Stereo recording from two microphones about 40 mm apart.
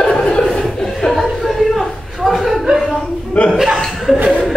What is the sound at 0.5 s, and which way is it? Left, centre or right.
Chuckle, centre.